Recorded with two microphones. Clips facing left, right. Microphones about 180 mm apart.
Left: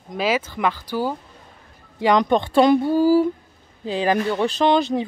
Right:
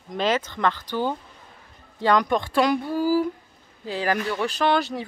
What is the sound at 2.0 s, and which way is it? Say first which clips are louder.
Speech: left 3 dB; 20° left (ahead or behind).